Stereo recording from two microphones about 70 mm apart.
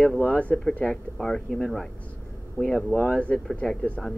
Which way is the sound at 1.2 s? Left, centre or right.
Centre.